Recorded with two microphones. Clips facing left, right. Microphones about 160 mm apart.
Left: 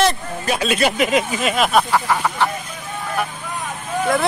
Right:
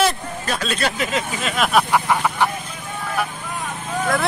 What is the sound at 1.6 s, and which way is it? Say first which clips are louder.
Speech: left 1 dB; centre (ahead or behind).